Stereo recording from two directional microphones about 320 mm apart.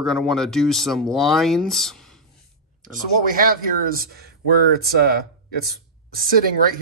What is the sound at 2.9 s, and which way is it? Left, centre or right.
Speech, right.